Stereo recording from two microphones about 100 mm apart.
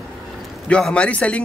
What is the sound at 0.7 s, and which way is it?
Speech, 10° left (ahead or behind).